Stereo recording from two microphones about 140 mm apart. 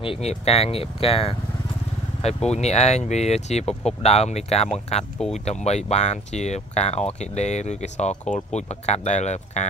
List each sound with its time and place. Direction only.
0.0 s speech: 45° left (ahead or behind)